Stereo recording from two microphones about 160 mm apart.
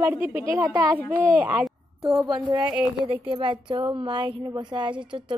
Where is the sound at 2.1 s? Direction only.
25° right (ahead or behind).